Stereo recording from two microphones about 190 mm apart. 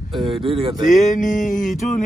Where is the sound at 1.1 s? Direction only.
40° left (ahead or behind).